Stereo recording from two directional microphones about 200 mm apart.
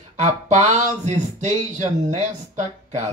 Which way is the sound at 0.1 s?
35° right (ahead or behind).